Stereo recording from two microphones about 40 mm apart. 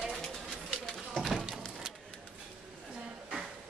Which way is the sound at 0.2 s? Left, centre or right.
Centre.